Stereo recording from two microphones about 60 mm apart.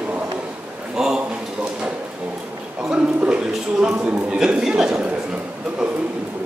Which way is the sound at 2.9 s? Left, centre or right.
Centre.